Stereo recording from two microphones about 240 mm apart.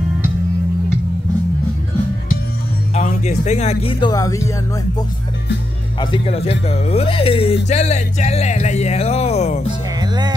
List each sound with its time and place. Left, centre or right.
2.9 s speech: left; by 4.5 s centre
5.9 s speech: left
9.9 s music: centre